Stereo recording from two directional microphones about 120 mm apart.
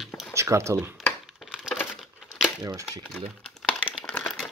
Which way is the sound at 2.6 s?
30° right (ahead or behind).